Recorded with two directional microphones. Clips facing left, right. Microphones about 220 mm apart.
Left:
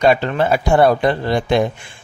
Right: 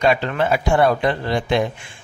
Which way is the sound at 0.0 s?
35° left (ahead or behind).